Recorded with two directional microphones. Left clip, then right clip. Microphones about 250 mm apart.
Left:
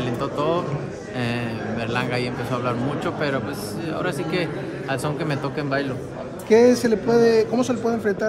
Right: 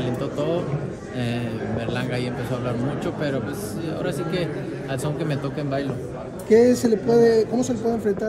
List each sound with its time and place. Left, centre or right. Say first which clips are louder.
0.0 s speech: left 2 dB; centre
2.0 s speech: left 3 dB; centre
4.0 s speech: left 2 dB; centre
6.5 s speech: left 1 dB; left